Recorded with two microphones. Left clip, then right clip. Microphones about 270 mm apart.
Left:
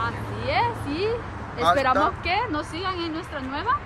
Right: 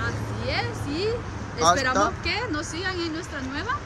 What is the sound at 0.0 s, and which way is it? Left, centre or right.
Vehicle, centre.